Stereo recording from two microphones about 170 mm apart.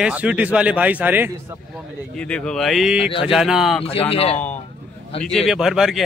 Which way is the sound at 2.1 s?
5° left (ahead or behind).